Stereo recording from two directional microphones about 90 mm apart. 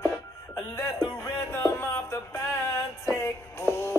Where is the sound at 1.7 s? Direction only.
30° left (ahead or behind).